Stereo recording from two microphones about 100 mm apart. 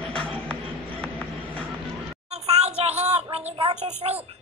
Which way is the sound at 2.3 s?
90° right.